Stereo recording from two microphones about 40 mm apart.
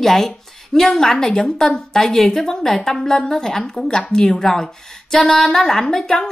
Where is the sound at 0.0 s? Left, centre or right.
Centre.